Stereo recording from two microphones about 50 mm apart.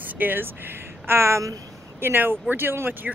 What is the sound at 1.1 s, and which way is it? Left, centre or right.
Speech, right.